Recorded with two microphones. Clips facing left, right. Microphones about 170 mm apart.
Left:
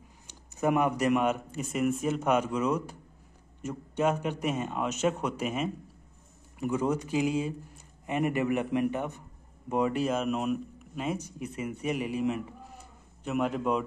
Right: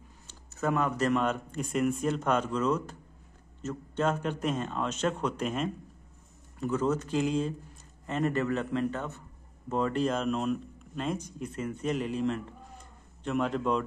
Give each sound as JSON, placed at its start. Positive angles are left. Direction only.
{"t": 0.3, "sound": "a man's voice", "side_deg": 15}